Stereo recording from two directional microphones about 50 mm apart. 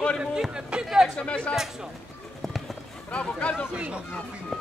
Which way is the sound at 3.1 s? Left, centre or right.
Left.